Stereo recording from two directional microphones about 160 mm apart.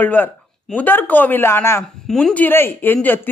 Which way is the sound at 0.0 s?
10° left (ahead or behind).